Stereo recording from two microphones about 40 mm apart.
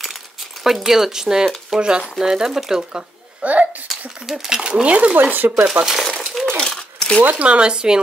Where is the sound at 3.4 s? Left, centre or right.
Right.